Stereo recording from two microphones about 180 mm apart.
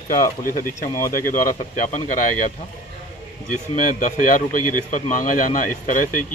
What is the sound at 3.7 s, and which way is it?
A man's voice, 45° left (ahead or behind).